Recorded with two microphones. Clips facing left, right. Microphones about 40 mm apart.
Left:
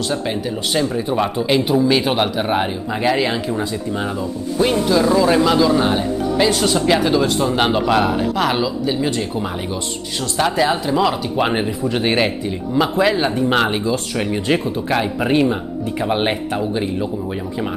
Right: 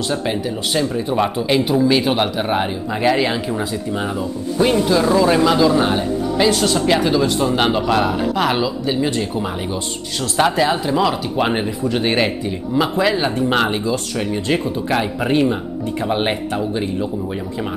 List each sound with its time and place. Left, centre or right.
0.1 s speech: centre
0.7 s speech: centre
14.1 s speech: centre
14.9 s speech: centre